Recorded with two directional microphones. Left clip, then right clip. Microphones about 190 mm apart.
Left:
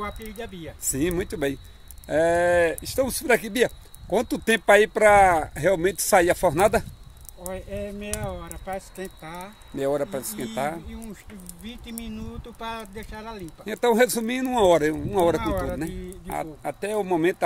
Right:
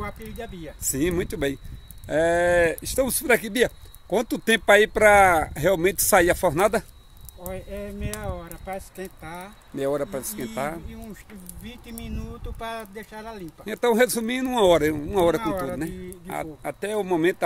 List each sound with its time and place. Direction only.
0.0 s speech: centre (ahead or behind)
0.8 s speech: 15° right (ahead or behind)
7.5 s speech: 15° right (ahead or behind)
9.8 s speech: centre (ahead or behind)
11.6 s speech: 15° right (ahead or behind)
13.7 s speech: centre (ahead or behind)